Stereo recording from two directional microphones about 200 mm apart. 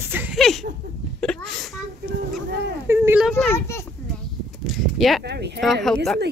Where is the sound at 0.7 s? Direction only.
45° right (ahead or behind).